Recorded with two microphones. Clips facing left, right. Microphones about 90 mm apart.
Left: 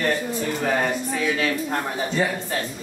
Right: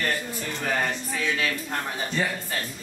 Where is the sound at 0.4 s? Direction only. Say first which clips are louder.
Left 5 dB; 5° left (ahead or behind).